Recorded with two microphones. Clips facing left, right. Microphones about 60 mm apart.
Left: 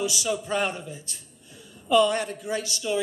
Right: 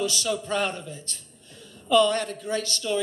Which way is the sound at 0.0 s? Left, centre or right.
Centre.